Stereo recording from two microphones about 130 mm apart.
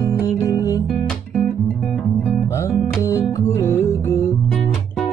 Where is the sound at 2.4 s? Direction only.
20° left (ahead or behind).